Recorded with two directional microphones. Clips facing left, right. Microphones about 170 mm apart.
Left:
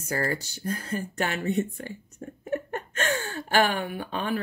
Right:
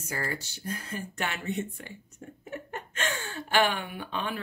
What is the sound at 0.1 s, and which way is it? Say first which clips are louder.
Speech: left 6 dB; 40° left (ahead or behind).